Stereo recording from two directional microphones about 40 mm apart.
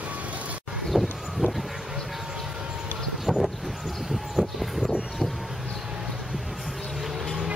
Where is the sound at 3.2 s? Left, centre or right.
Centre.